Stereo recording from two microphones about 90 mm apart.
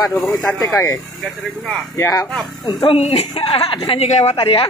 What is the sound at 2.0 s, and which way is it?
Speech, 40° left (ahead or behind).